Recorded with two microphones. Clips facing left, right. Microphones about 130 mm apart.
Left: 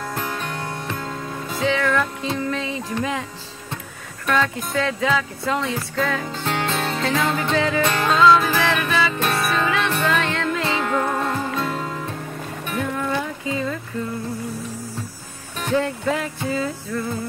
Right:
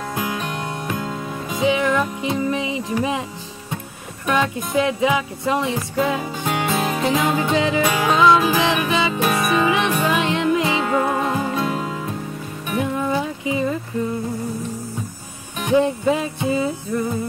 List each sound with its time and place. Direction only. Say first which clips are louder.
0.1 s music: right 5 dB; 10° right (ahead or behind)
4.3 s music: right 1 dB; 15° right (ahead or behind)
15.6 s music: right 4 dB; 15° right (ahead or behind)